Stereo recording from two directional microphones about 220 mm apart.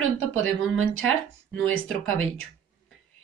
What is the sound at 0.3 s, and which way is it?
A woman's voice, 65° right (ahead or behind).